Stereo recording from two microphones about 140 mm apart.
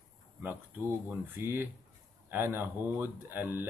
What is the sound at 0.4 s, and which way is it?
Speech, 15° right (ahead or behind).